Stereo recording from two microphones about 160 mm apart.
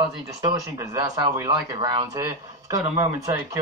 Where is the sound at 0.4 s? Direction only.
25° right (ahead or behind).